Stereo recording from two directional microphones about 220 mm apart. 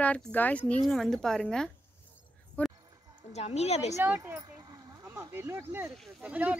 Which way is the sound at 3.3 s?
30° left (ahead or behind).